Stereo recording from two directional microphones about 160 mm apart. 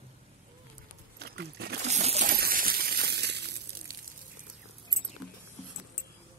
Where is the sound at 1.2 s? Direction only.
85° right.